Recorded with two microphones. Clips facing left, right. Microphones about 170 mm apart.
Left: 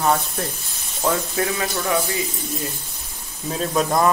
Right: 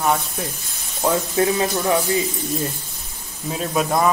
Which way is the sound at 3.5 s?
5° right (ahead or behind).